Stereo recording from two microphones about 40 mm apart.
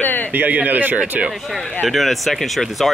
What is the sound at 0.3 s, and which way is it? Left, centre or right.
Speech, right.